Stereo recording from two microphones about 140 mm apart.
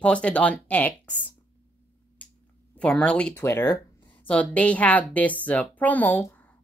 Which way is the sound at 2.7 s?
5° left (ahead or behind).